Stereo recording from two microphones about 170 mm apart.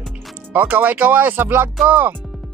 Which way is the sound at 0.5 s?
10° right (ahead or behind).